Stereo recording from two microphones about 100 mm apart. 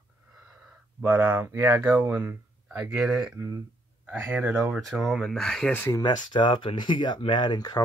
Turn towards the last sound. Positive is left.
turn(degrees=45)  # may be behind; listen again after turning